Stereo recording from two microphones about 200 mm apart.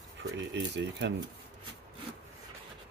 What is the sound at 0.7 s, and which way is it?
Speech, 60° right (ahead or behind).